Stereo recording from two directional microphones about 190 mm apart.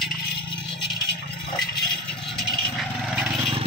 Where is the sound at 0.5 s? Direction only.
25° left (ahead or behind).